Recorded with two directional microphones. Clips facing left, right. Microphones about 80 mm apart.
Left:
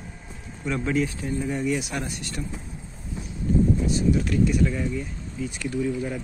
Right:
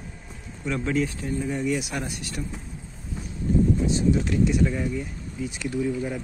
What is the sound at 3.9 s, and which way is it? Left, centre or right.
Speech, right.